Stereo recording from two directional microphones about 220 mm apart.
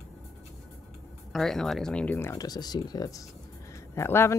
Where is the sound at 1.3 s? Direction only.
Centre (ahead or behind).